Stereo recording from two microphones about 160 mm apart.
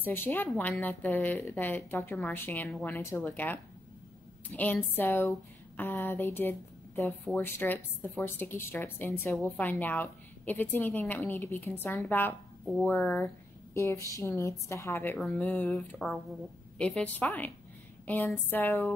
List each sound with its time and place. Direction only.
0.0 s speech: 15° left (ahead or behind)
15.1 s speech: 5° left (ahead or behind)